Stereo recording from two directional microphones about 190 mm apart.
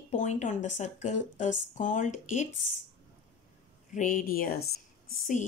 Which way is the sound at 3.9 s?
45° left (ahead or behind).